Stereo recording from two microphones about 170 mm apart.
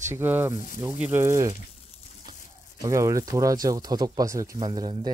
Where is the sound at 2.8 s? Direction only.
20° right (ahead or behind).